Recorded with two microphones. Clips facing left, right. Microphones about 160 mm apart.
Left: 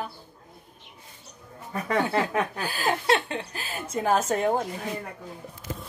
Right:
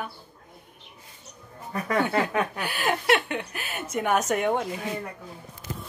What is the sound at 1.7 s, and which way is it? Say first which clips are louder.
Speech: even; 30° left (ahead or behind).